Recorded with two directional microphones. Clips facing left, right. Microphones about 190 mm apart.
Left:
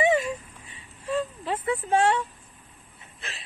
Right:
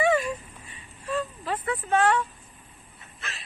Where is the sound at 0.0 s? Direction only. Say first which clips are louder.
Left 1 dB; 25° left (ahead or behind).